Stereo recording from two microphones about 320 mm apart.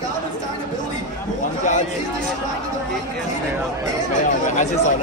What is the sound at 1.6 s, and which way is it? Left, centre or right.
Chatter, left.